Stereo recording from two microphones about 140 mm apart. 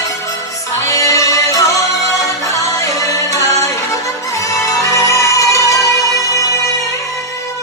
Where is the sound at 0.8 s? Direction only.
20° left (ahead or behind).